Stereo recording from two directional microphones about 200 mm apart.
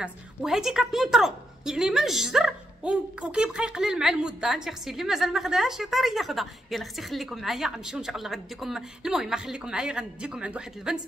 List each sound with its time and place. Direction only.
0.0 s a woman's voice: centre (ahead or behind)